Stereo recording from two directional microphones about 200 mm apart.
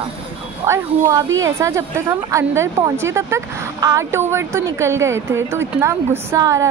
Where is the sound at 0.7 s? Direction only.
15° right (ahead or behind).